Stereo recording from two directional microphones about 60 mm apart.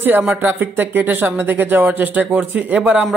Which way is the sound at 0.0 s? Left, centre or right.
Right.